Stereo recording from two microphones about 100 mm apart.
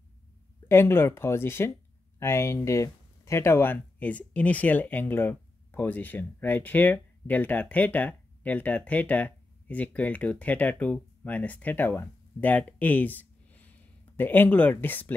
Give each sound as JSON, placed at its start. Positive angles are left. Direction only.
{"t": 0.7, "sound": "speech", "side_deg": 25}